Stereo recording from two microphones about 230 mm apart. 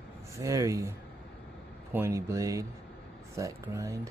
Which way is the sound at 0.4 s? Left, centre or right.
Centre.